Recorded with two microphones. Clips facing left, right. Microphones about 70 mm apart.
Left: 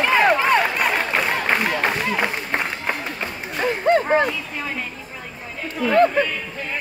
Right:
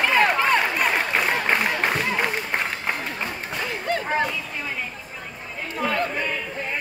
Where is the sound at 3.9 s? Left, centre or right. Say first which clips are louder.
Left 7 dB; left.